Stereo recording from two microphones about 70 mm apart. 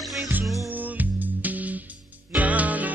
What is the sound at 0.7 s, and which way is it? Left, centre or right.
Music, right.